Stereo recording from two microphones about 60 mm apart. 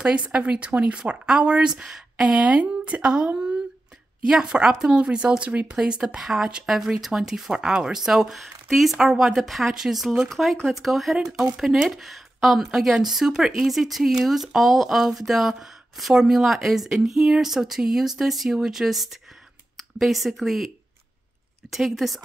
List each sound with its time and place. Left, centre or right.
0.0 s speech: centre